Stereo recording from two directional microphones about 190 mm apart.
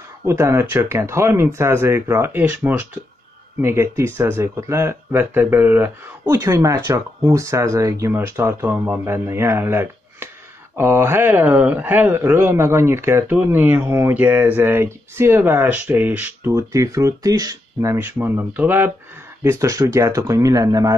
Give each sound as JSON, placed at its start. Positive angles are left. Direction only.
{"t": 0.2, "sound": "speech", "side_deg": -15}